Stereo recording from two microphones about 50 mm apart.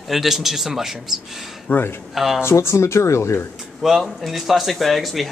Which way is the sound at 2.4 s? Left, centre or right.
Left.